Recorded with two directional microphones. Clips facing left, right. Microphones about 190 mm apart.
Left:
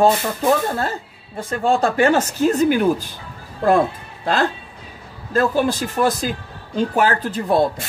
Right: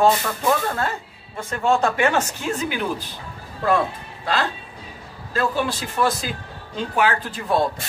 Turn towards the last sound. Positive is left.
turn(degrees=40)  # may be behind; listen again after turning